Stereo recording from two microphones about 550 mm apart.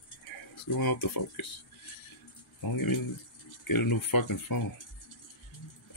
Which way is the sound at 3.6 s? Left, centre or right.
Left.